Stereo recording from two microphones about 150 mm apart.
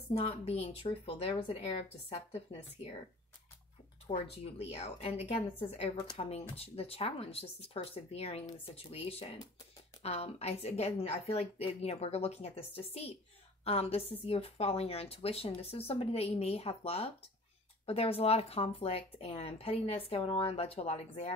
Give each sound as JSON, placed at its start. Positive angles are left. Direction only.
{"t": 0.2, "sound": "a woman's voice", "side_deg": 45}
{"t": 4.1, "sound": "a woman's voice", "side_deg": 45}